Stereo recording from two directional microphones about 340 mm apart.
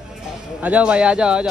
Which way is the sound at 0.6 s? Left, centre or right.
Centre.